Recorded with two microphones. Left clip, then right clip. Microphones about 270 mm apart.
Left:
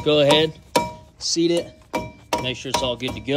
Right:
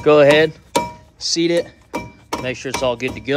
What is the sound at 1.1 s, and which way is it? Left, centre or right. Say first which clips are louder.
Chop: right 3 dB; centre.